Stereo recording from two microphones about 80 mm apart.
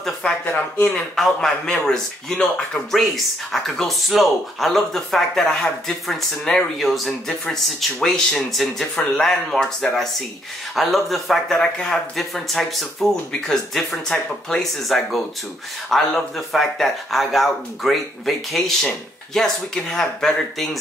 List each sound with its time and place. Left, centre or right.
0.2 s speech: left
1.1 s speech: centre